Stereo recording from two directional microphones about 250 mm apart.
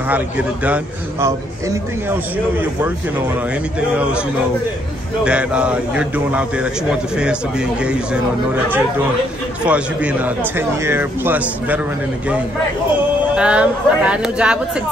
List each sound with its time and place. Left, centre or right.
0.1 s a man's voice: centre
3.9 s a man's voice: centre
5.2 s a man's voice: centre
9.7 s a man's voice: centre
13.3 s a man's voice: centre